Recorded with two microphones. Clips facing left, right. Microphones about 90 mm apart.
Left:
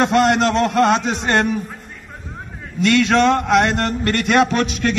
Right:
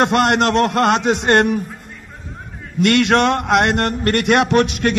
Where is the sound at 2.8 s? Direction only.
60° right (ahead or behind).